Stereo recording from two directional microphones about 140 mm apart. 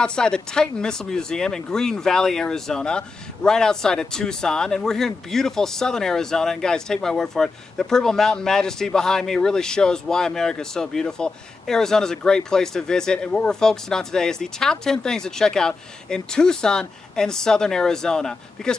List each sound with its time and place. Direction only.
0.0 s speech: 5° left (ahead or behind)